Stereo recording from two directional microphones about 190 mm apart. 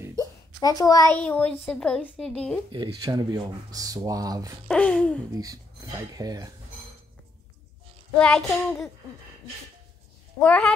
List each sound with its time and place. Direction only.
0.2 s a child's voice: 20° left (ahead or behind)
3.0 s speech: 20° right (ahead or behind)
4.6 s child singing: 5° left (ahead or behind)
5.4 s speech: 20° right (ahead or behind)
8.2 s child singing: 5° left (ahead or behind)
10.4 s child singing: 5° left (ahead or behind)